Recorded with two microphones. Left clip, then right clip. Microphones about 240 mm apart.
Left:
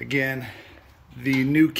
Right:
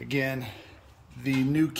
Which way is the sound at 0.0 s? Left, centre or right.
Centre.